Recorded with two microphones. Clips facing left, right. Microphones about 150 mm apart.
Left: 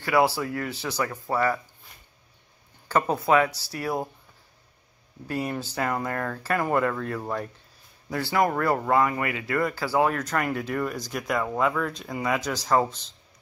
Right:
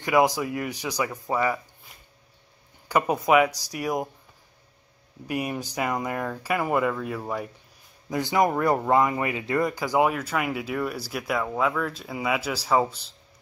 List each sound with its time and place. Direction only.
0.0 s speech: 15° right (ahead or behind)
2.9 s speech: 15° right (ahead or behind)
5.3 s speech: 15° right (ahead or behind)